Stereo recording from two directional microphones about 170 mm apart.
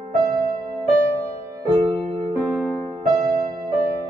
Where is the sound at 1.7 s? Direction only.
30° right (ahead or behind).